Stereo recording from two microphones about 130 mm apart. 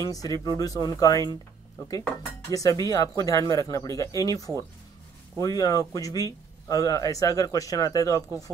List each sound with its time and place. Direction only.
0.0 s speech: 30° left (ahead or behind)
2.5 s speech: 30° left (ahead or behind)